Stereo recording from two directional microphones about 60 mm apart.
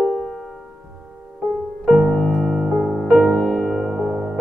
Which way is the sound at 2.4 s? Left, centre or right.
Centre.